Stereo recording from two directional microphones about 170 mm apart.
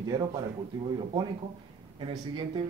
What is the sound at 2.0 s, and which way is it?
Speech, 30° right (ahead or behind).